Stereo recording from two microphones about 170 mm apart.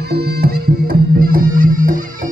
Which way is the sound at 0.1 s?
65° right (ahead or behind).